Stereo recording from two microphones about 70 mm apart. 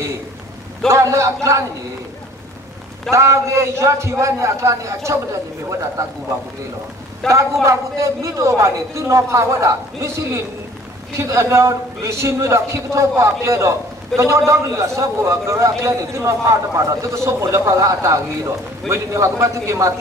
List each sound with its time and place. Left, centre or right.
0.8 s a man's voice: right
3.1 s a man's voice: right
7.2 s a man's voice: centre
7.6 s a man's voice: right